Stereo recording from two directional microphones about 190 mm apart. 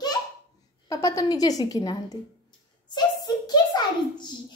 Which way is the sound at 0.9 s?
15° left (ahead or behind).